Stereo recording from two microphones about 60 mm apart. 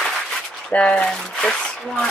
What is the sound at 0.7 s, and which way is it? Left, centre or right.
Speech, centre.